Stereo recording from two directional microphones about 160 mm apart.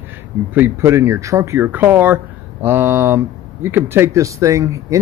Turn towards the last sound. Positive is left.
turn(degrees=-20)  # may be behind; listen again after turning